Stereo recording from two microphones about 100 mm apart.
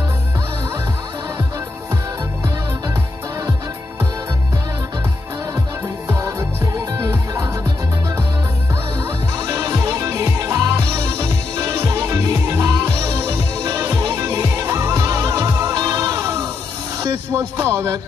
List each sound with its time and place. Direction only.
6.0 s music: 35° right (ahead or behind)
9.5 s music: 30° right (ahead or behind)
15.7 s music: 40° right (ahead or behind)